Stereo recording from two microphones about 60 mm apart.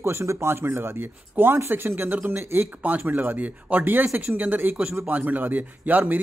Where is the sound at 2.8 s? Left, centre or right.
Right.